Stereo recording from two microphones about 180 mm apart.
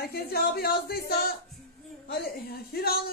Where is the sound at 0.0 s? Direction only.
60° left (ahead or behind).